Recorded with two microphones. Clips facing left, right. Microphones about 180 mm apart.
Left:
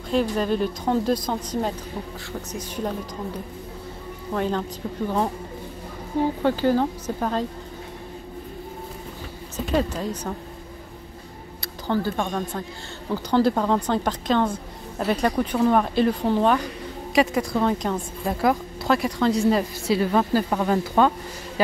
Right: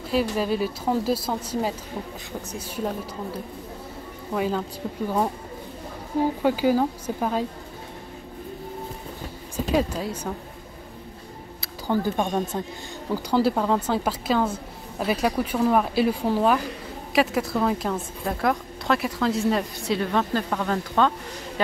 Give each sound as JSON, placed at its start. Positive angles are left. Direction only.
{"t": 0.1, "sound": "a woman's voice", "side_deg": -5}
{"t": 4.3, "sound": "a woman's voice", "side_deg": -5}
{"t": 6.4, "sound": "speech", "side_deg": -10}
{"t": 9.7, "sound": "speech", "side_deg": -5}
{"t": 11.6, "sound": "speech", "side_deg": -15}
{"t": 13.1, "sound": "a woman's voice", "side_deg": -5}